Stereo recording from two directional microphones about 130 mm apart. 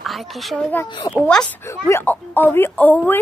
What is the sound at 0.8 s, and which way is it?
Speech, 35° left (ahead or behind).